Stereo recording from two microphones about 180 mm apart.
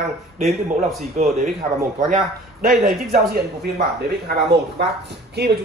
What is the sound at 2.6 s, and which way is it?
Speech, 55° right (ahead or behind).